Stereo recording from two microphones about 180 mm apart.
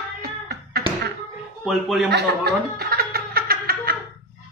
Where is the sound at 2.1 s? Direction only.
65° right (ahead or behind).